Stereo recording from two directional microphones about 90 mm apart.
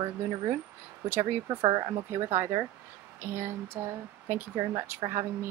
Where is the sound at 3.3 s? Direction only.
25° right (ahead or behind).